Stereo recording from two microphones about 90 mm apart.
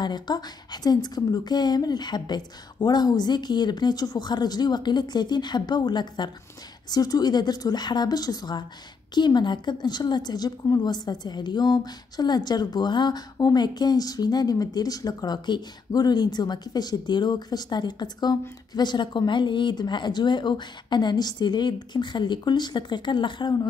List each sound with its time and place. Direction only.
0.0 s a woman's voice: 50° left (ahead or behind)